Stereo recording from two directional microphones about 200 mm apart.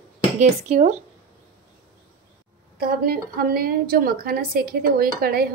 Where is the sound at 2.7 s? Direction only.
50° right (ahead or behind).